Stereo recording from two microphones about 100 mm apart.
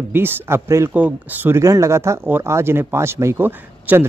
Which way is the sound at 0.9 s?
15° right (ahead or behind).